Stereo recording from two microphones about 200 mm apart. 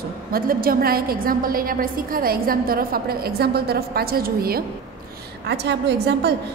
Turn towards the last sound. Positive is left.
turn(degrees=-55)  # may be behind; listen again after turning